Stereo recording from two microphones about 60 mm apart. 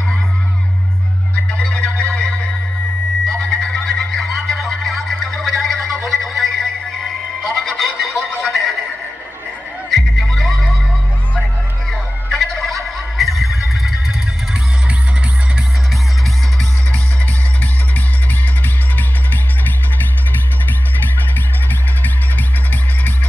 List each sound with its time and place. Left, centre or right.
1.3 s music: centre
9.8 s music: centre
11.9 s turkey: centre